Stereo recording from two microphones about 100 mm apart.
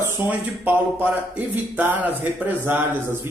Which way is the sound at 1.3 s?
20° right (ahead or behind).